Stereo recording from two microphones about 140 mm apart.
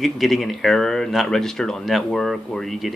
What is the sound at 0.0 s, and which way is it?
Speech, centre (ahead or behind).